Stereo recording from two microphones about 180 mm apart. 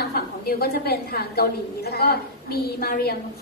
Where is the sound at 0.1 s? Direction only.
60° left (ahead or behind).